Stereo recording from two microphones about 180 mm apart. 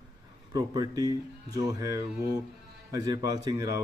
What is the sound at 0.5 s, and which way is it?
Speech, 20° right (ahead or behind).